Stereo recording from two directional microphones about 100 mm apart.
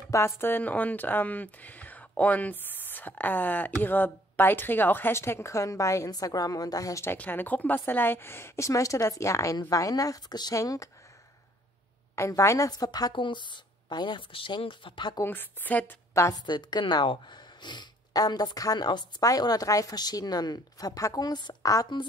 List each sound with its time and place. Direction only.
0.1 s speech: 25° left (ahead or behind)
7.2 s a woman's voice: 20° left (ahead or behind)
12.2 s speech: 30° left (ahead or behind); by 15.1 s 55° left (ahead or behind)
15.2 s speech: 20° left (ahead or behind)
16.2 s a woman's voice: 35° left (ahead or behind)
16.4 s speech: 45° left (ahead or behind)
21.6 s a woman's voice: 35° left (ahead or behind)